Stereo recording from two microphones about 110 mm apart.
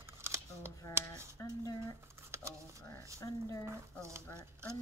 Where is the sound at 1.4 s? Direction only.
30° left (ahead or behind).